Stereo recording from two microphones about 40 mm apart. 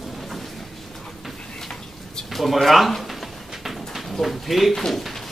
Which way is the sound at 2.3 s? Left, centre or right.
Centre.